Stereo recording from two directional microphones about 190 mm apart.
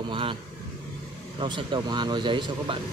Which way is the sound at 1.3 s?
25° right (ahead or behind).